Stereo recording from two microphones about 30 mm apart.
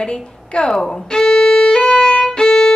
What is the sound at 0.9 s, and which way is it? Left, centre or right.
Violin, left.